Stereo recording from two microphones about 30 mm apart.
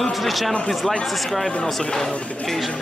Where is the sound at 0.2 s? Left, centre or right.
Centre.